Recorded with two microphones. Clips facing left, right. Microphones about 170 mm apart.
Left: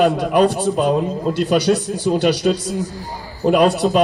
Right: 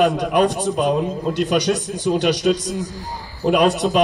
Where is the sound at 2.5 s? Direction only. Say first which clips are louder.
Left 1 dB; 5° left (ahead or behind).